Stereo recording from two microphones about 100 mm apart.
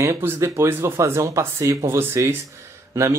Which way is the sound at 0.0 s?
25° right (ahead or behind).